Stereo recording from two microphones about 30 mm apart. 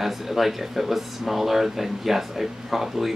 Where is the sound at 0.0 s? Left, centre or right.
Centre.